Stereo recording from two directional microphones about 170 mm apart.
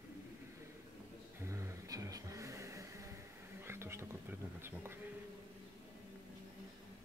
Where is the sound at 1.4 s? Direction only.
15° right (ahead or behind).